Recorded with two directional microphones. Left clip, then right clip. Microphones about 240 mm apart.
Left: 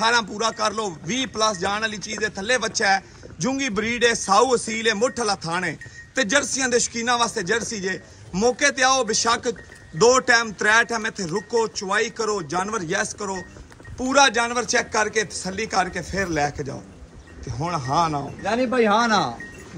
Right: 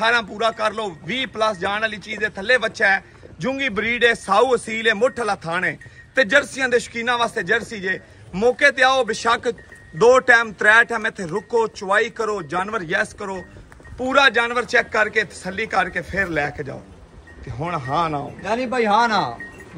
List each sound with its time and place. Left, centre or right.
0.0 s speech: centre
18.4 s speech: right